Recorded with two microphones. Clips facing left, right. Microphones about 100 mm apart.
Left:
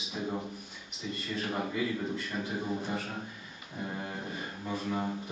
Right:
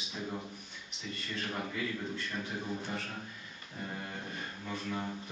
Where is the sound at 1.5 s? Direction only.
10° left (ahead or behind).